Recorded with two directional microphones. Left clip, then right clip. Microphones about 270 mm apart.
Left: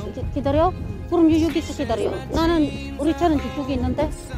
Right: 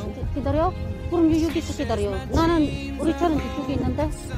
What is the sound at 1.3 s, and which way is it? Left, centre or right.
Speech, centre.